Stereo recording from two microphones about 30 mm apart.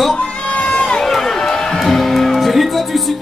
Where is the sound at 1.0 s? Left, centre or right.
Centre.